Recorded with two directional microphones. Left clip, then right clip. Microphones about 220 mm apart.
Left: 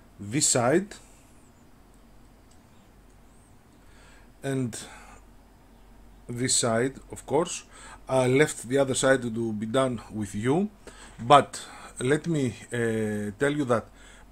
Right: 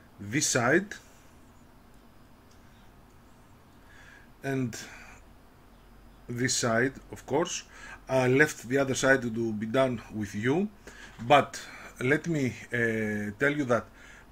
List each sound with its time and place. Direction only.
0.3 s speech: 25° left (ahead or behind)
4.4 s speech: 25° left (ahead or behind)
6.3 s speech: 20° left (ahead or behind)